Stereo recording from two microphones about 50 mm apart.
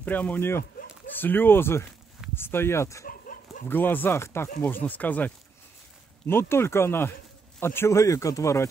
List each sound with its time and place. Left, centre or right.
0.0 s speech: left
0.4 s speech: left
1.2 s speech: left
3.6 s speech: left
4.1 s speech: left
4.6 s speech: left
6.2 s speech: left
7.9 s speech: left